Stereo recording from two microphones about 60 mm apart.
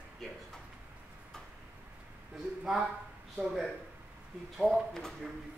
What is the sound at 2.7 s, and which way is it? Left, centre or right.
Speech, centre.